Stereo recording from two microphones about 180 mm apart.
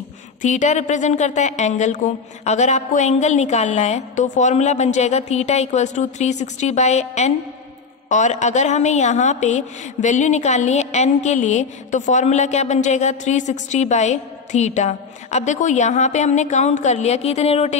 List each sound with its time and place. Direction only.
0.4 s a woman's voice: 40° left (ahead or behind)